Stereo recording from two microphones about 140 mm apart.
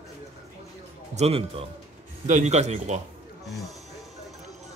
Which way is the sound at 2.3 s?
55° right (ahead or behind).